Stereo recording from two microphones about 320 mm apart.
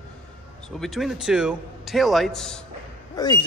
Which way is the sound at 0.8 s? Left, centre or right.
Centre.